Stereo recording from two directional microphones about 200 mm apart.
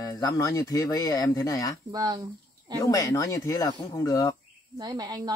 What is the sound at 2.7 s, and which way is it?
Speech, 15° left (ahead or behind).